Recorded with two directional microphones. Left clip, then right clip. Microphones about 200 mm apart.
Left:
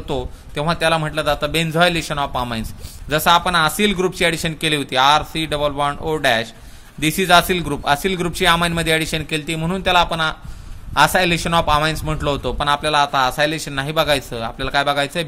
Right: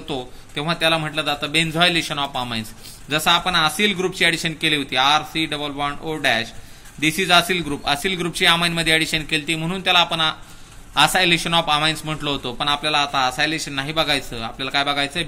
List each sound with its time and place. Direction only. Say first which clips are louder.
0.1 s a man's voice: left 3 dB; 50° left (ahead or behind)